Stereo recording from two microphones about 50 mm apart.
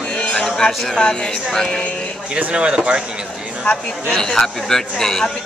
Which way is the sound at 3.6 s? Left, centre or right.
Centre.